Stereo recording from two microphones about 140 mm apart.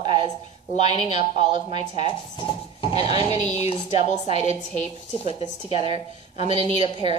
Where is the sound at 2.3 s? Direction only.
40° left (ahead or behind).